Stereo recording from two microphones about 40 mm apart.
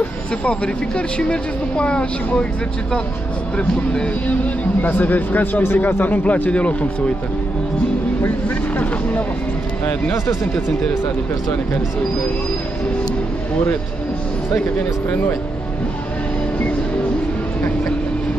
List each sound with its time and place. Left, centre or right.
0.5 s speech: left
3.5 s speech: left
4.8 s a man's voice: left
8.5 s a man's voice: left
10.2 s speech: left
14.8 s a man's voice: left